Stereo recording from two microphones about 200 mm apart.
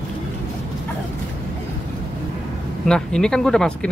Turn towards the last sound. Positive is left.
turn(degrees=5)  # may be behind; listen again after turning